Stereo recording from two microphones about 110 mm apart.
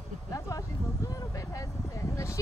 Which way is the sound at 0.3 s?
30° left (ahead or behind).